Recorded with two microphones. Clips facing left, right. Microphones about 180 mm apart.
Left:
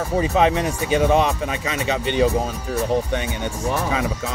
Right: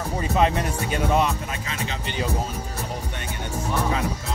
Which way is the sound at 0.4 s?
90° left.